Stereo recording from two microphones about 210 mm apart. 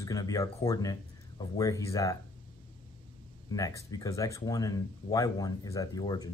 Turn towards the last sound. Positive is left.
turn(degrees=20)  # may be behind; listen again after turning